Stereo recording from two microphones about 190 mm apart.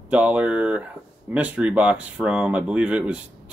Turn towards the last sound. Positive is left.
turn(degrees=-5)  # may be behind; listen again after turning